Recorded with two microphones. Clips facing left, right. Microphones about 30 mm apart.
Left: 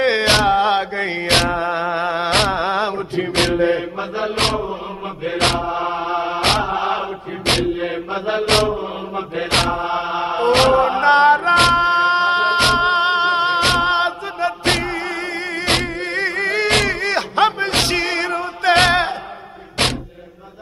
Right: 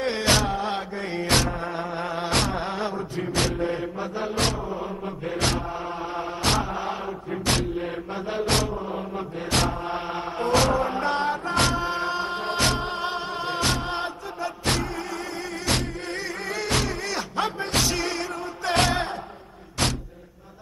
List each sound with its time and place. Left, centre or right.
0.0 s music: left
5.2 s chant: left
7.4 s mantra: left
15.6 s music: left